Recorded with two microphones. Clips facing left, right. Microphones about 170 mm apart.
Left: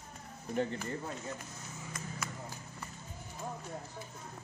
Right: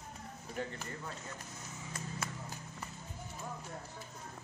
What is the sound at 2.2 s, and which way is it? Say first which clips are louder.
Run: left 1 dB; 30° right (ahead or behind).